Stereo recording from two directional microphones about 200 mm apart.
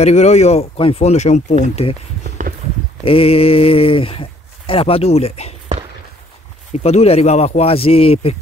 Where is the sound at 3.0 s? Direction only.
30° left (ahead or behind).